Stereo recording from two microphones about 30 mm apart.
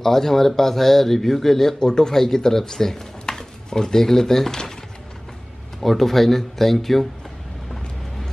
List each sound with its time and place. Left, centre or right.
0.0 s speech: centre
1.8 s speech: left
5.8 s speech: centre